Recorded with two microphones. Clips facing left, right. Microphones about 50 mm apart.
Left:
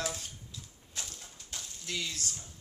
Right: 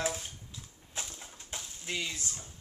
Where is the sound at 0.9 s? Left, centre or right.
Right.